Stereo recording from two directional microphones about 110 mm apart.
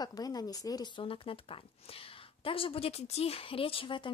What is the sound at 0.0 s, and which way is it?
Speech, 35° left (ahead or behind).